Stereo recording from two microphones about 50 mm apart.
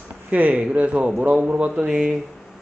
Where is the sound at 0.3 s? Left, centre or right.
Right.